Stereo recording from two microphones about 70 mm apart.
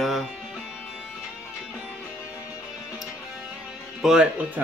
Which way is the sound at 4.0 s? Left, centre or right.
Centre.